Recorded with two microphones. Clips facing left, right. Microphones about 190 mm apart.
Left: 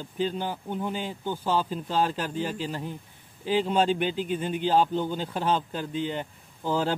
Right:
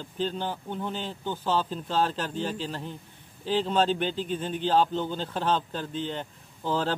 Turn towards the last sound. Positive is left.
turn(degrees=10)  # may be behind; listen again after turning